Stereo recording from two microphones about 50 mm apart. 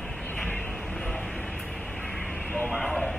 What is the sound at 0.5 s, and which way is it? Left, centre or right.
Vehicle, centre.